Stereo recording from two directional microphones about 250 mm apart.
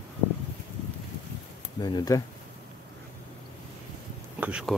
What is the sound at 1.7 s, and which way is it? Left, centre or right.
Speech, centre.